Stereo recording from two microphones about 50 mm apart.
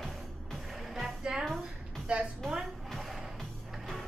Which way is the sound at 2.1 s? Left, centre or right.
Right.